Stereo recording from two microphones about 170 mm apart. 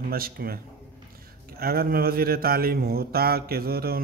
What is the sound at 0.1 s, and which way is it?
Speech, 60° right (ahead or behind).